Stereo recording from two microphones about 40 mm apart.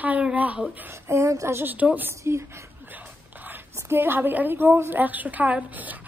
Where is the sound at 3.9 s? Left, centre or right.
Right.